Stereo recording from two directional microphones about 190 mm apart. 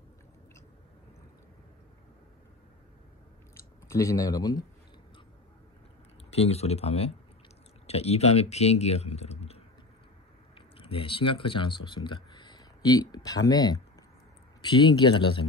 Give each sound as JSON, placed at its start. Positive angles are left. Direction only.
{"t": 3.9, "sound": "speech", "side_deg": 15}
{"t": 6.3, "sound": "speech", "side_deg": 35}
{"t": 10.8, "sound": "speech", "side_deg": 25}